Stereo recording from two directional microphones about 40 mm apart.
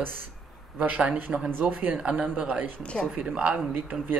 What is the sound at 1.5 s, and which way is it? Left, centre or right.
Speech, right.